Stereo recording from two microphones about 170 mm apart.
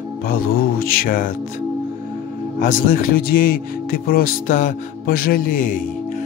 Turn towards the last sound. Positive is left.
turn(degrees=50)  # may be behind; listen again after turning